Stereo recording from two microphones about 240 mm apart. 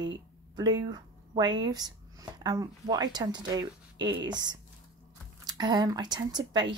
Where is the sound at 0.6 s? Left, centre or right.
Centre.